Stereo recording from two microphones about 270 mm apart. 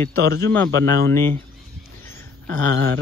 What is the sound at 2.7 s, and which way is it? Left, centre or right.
Speech, right.